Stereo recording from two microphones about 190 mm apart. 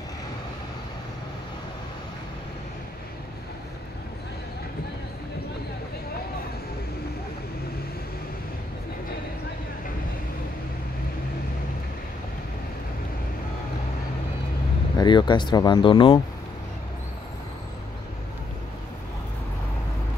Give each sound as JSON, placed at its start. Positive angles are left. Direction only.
{"t": 15.0, "sound": "speech", "side_deg": 25}